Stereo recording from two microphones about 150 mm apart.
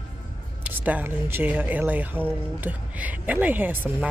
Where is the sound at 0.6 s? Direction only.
10° right (ahead or behind).